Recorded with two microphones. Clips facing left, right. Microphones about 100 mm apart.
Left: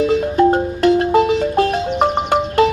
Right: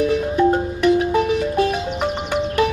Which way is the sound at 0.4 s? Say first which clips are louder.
Left 3 dB; 60° left (ahead or behind).